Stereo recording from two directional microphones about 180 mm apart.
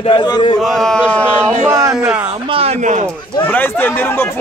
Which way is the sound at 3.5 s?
10° left (ahead or behind).